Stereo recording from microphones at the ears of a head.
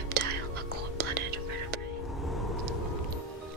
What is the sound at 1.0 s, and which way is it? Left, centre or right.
Whispering, right.